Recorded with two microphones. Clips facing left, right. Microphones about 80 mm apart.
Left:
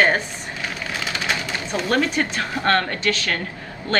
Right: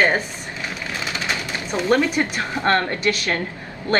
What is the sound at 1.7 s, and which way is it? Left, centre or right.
Speech, right.